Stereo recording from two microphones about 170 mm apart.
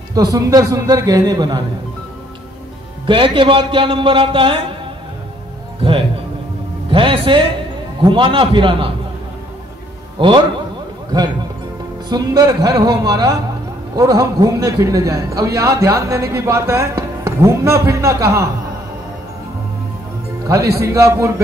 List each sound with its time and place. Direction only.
0.1 s a man's voice: 20° right (ahead or behind)
3.1 s speech: 30° right (ahead or behind)
5.8 s a man's voice: 30° right (ahead or behind)
10.1 s a man's voice: 30° right (ahead or behind)
12.1 s a man's voice: 20° right (ahead or behind)
20.8 s a man's voice: 20° right (ahead or behind)